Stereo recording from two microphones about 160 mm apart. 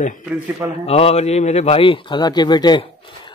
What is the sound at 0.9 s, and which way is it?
A man's voice, 40° left (ahead or behind).